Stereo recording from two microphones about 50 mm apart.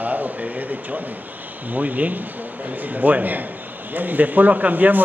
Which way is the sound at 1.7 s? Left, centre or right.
Right.